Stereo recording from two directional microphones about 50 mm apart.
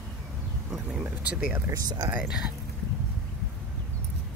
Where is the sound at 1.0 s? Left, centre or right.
Right.